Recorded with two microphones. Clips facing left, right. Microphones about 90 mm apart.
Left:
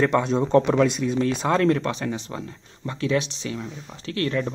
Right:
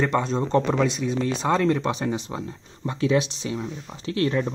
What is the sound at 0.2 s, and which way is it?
Speech, 5° left (ahead or behind).